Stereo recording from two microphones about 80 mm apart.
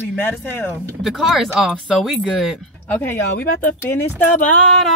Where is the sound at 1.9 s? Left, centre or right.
Centre.